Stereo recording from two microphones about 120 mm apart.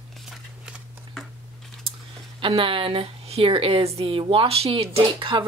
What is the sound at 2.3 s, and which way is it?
Speech, 50° right (ahead or behind).